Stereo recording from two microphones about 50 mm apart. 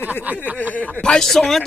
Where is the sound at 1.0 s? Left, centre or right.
Centre.